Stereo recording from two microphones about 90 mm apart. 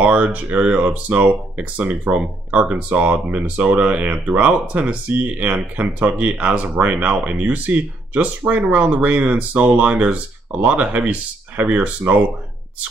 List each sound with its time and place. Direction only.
0.0 s speech: 15° right (ahead or behind)